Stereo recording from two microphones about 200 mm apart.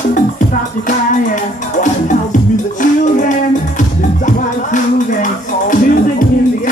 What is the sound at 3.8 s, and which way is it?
Music, 40° left (ahead or behind).